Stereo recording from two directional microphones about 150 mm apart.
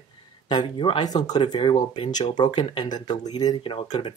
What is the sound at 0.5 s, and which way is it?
Speech, 30° left (ahead or behind).